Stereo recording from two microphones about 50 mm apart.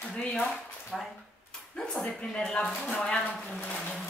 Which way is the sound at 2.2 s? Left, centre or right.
Centre.